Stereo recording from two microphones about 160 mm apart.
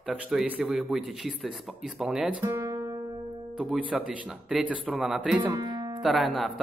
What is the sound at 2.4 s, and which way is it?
Speech, 20° right (ahead or behind).